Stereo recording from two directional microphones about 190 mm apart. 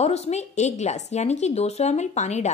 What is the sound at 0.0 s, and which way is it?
Speech, 35° left (ahead or behind).